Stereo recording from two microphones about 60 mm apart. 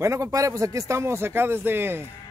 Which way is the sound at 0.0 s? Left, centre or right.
Right.